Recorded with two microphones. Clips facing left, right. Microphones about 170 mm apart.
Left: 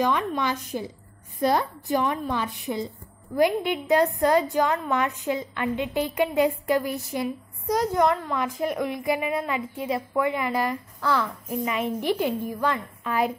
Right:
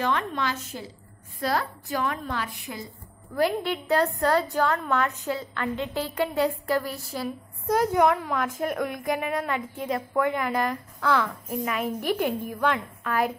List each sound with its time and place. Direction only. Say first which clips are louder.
0.0 s a woman's voice: left 3 dB; 10° left (ahead or behind)
7.7 s a woman's voice: right 1 dB; 10° right (ahead or behind)
12.0 s a woman's voice: left 1 dB; 50° right (ahead or behind)
12.5 s a woman's voice: right 1 dB; 5° left (ahead or behind)